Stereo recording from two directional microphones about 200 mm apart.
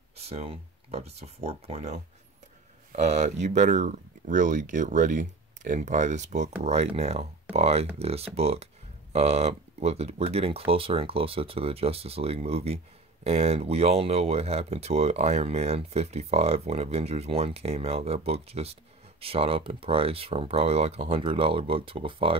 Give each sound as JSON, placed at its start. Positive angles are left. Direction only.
{"t": 0.2, "sound": "speech", "side_deg": -30}